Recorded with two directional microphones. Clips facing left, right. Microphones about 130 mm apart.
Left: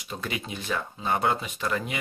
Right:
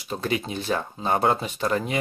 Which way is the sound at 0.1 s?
35° right (ahead or behind).